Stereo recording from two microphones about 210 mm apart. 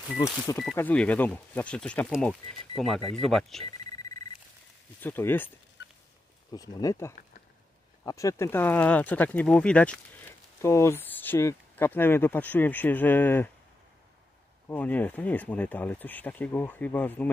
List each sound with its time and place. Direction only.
0.2 s speech: 20° left (ahead or behind)
0.6 s speech: 5° left (ahead or behind)
5.0 s speech: 10° left (ahead or behind)
6.5 s speech: 15° left (ahead or behind)
14.7 s speech: 5° left (ahead or behind)